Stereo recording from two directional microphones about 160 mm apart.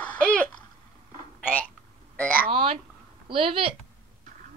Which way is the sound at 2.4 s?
40° right (ahead or behind).